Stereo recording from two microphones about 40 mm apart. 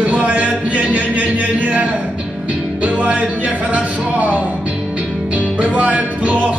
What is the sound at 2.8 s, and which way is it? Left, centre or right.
Speech, right.